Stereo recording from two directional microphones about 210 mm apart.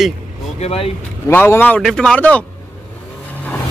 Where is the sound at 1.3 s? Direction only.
10° left (ahead or behind).